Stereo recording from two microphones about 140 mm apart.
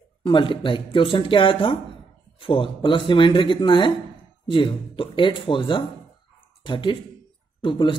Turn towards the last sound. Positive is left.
turn(degrees=35)  # may be behind; listen again after turning